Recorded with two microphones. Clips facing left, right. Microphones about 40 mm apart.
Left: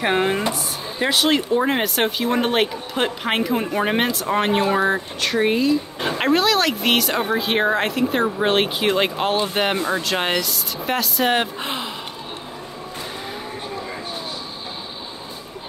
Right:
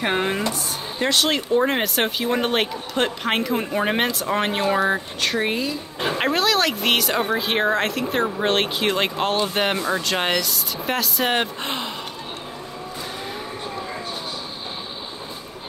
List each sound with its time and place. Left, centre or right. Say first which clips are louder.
0.0 s speech: left 3 dB; centre